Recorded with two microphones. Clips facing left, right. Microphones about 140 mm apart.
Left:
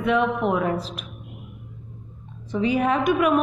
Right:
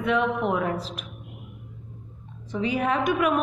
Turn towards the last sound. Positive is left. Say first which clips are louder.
# left 3 dB
turn(degrees=20)  # may be behind; listen again after turning